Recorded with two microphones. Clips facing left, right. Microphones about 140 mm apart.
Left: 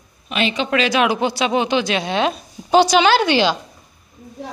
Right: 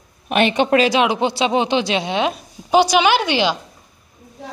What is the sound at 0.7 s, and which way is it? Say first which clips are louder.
Speech: right 4 dB; 35° right (ahead or behind).